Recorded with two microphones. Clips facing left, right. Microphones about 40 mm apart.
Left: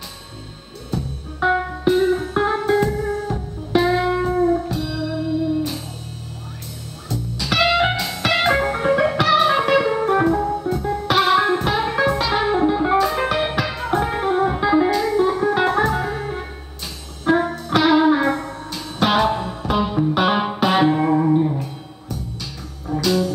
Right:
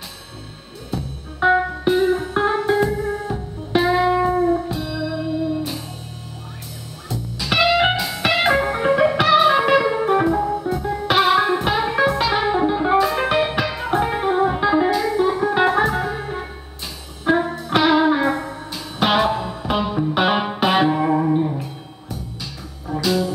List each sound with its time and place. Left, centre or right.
0.9 s music: centre
7.1 s music: centre
9.5 s music: centre
22.8 s music: centre